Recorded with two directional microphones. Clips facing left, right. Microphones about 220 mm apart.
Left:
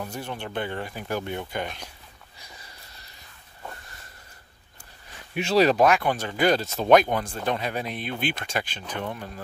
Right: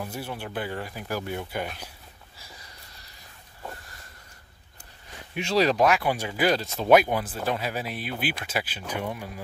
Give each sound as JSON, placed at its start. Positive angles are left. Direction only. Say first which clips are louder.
{"t": 0.0, "sound": "speech", "louder": "left 1 dB", "side_deg": -10}
{"t": 5.5, "sound": "speech", "louder": "left 3 dB", "side_deg": 55}
{"t": 5.9, "sound": "speech", "louder": "left 1 dB", "side_deg": -5}